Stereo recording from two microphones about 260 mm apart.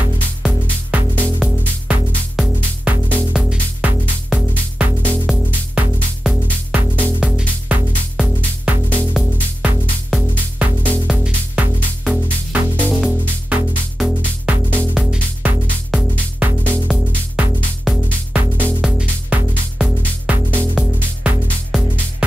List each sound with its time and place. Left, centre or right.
0.4 s music: centre
16.9 s music: centre